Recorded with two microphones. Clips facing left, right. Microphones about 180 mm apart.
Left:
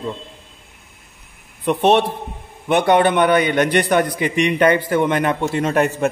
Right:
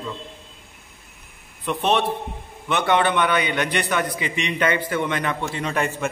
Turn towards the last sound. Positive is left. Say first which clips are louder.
# left 7 dB
turn(degrees=45)  # may be behind; listen again after turning